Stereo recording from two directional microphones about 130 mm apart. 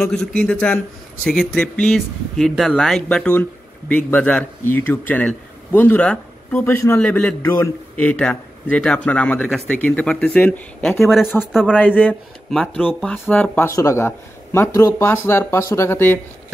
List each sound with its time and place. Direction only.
0.0 s a man's voice: 5° left (ahead or behind)
11.0 s speech: centre (ahead or behind)
11.7 s a man's voice: 10° left (ahead or behind)
13.7 s speech: 25° left (ahead or behind)